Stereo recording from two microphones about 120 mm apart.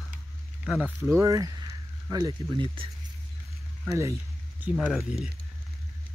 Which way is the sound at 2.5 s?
45° right (ahead or behind).